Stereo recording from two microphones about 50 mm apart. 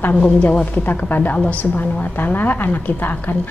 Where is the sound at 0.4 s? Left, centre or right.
Left.